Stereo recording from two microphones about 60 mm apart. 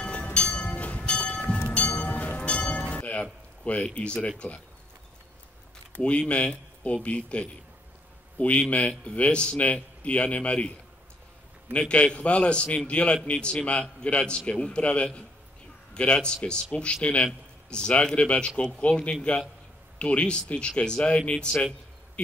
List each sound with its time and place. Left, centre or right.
0.0 s train: centre
1.5 s bell: left
2.7 s music: left
5.9 s a man's voice: left
11.7 s a man's voice: centre